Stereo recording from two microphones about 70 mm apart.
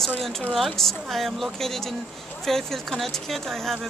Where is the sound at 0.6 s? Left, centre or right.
Centre.